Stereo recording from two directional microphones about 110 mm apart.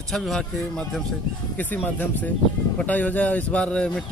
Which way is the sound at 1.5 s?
15° left (ahead or behind).